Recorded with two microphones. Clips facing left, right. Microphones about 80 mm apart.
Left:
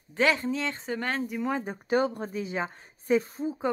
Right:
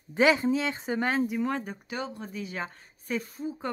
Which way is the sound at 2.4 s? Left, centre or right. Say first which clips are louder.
Left 3 dB; left.